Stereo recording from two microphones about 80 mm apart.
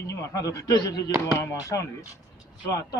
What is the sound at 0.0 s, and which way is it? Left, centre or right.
Speech, left.